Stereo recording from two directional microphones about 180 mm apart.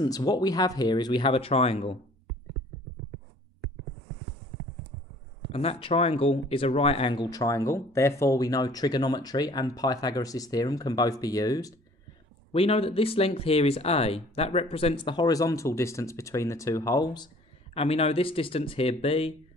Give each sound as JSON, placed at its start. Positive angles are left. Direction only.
{"t": 0.0, "sound": "speech", "side_deg": 20}
{"t": 5.5, "sound": "speech", "side_deg": 35}
{"t": 12.5, "sound": "speech", "side_deg": 35}
{"t": 17.7, "sound": "speech", "side_deg": 35}